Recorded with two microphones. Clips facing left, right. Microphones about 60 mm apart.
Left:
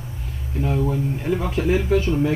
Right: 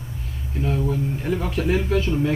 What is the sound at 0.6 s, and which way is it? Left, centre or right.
Speech, left.